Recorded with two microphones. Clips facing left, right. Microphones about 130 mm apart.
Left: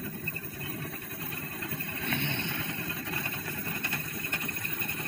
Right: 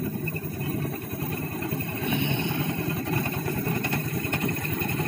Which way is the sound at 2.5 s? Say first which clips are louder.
Right 9 dB; 40° right (ahead or behind).